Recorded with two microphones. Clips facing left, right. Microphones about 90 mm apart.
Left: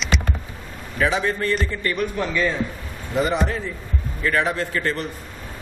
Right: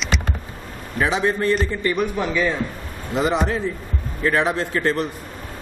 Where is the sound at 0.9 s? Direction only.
25° right (ahead or behind); by 2.5 s 10° right (ahead or behind).